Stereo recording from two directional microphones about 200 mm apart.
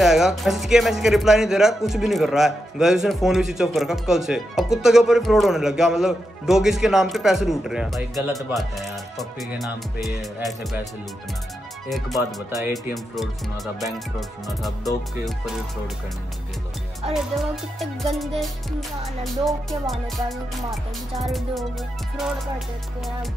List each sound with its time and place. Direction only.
0.0 s speech: centre (ahead or behind)
11.9 s speech: centre (ahead or behind)
17.1 s speech: centre (ahead or behind)